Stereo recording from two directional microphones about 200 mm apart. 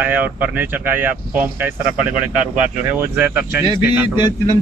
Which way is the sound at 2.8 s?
10° right (ahead or behind).